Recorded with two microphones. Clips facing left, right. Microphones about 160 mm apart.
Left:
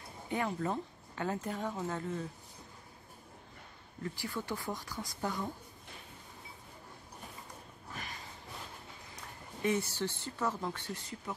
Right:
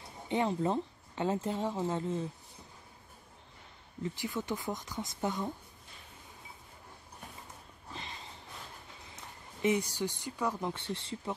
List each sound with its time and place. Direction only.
0.3 s a woman's voice: 25° right (ahead or behind)
4.0 s a woman's voice: 20° right (ahead or behind)
7.9 s snort: 25° right (ahead or behind)
9.1 s speech: 20° right (ahead or behind)